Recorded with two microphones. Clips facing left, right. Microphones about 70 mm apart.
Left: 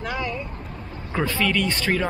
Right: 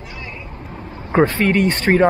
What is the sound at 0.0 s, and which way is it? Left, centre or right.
Vehicle, left.